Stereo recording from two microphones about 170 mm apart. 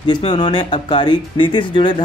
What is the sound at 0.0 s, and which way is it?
A man's voice, 30° left (ahead or behind).